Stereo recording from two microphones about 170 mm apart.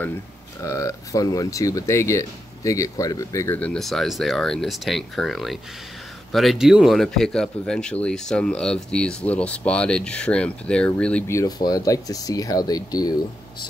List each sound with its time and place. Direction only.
0.7 s speech: 20° left (ahead or behind)